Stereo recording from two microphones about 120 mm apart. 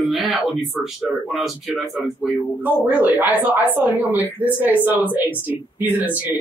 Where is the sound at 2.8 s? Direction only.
15° right (ahead or behind).